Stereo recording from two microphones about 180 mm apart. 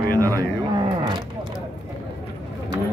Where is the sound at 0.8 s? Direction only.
25° right (ahead or behind).